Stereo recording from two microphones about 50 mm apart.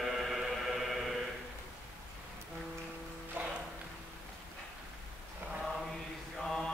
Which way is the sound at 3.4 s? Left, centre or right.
Right.